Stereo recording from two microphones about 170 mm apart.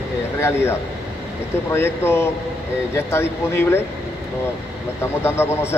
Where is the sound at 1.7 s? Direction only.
15° left (ahead or behind).